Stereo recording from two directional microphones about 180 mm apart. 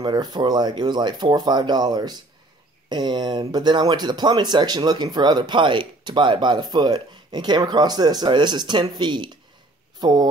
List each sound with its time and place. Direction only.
0.0 s speech: 25° right (ahead or behind)